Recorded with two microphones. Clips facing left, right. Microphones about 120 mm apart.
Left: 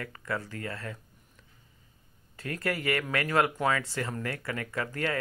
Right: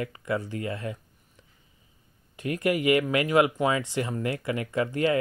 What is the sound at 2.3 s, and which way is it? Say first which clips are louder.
Speech: right 7 dB; 15° right (ahead or behind).